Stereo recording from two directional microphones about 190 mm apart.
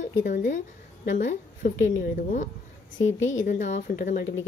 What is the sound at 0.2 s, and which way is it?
A woman's voice, 40° left (ahead or behind).